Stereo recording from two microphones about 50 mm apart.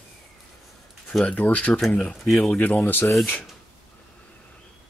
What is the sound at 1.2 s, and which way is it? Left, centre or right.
Speech, left.